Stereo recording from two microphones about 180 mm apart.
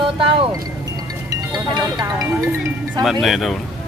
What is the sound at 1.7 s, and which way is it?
Speech, 25° right (ahead or behind).